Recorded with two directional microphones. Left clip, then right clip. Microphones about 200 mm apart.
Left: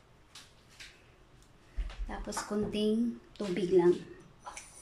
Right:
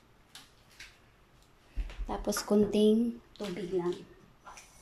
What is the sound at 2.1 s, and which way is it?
Speech, 25° right (ahead or behind).